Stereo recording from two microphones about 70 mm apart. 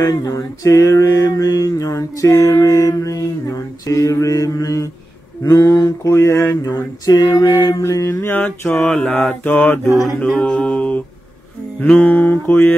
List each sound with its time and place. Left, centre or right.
0.0 s mantra: left
2.6 s mantra: left
5.4 s a sound: left
5.9 s mantra: left
6.5 s a sound: left
7.5 s mantra: left
8.8 s a capella: centre
9.2 s mantra: left
10.2 s a capella: centre
11.8 s mantra: left